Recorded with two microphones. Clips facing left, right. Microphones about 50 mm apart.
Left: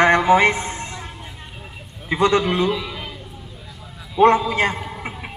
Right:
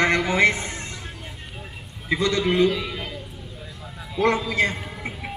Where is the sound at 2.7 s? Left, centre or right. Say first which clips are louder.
Left 2 dB; centre.